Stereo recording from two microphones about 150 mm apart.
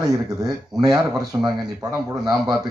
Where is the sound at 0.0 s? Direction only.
25° right (ahead or behind).